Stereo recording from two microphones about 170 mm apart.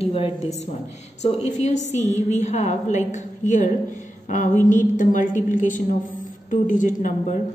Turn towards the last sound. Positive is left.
turn(degrees=50)  # may be behind; listen again after turning